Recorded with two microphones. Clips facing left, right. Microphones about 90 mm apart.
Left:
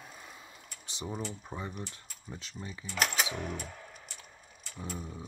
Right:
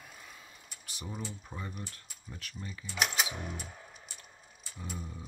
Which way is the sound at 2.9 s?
5° right (ahead or behind).